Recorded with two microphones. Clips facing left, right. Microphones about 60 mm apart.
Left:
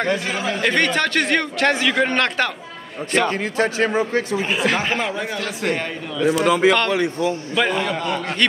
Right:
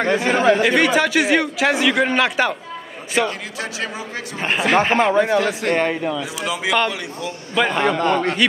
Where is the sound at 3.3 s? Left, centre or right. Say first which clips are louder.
Left 7 dB; left.